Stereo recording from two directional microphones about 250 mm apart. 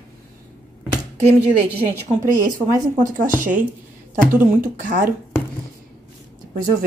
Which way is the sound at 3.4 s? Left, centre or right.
Right.